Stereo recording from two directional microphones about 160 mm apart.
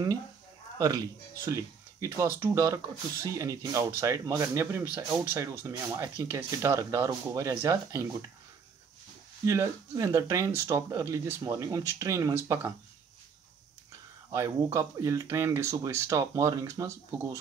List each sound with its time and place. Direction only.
0.7 s speech: 25° right (ahead or behind)
9.5 s speech: 20° right (ahead or behind)
14.3 s speech: 20° right (ahead or behind)